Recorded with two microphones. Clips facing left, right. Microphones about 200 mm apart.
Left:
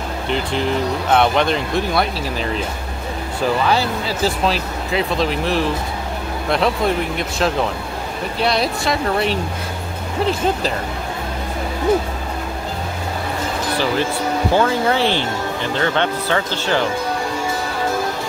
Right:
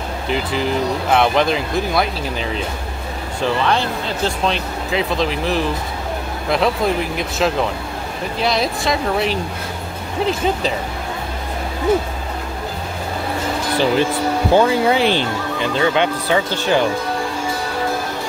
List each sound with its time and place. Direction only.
0.3 s speech: centre (ahead or behind)
3.6 s speech: 5° left (ahead or behind)
14.5 s speech: 15° right (ahead or behind)